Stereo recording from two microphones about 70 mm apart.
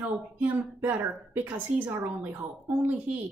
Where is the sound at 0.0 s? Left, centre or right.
Right.